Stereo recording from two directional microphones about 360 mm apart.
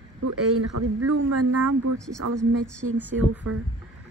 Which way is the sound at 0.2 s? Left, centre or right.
Right.